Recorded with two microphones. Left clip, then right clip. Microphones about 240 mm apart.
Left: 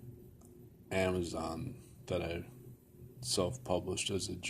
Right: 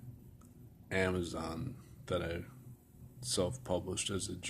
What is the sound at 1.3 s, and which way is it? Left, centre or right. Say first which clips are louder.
Speech: left 2 dB; right.